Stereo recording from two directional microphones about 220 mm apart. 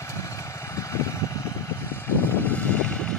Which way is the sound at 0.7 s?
15° left (ahead or behind).